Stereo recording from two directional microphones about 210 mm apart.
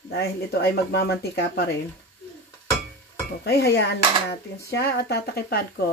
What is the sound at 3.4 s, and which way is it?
Speech, 50° left (ahead or behind).